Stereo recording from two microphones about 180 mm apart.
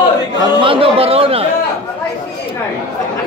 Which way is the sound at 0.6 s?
30° right (ahead or behind).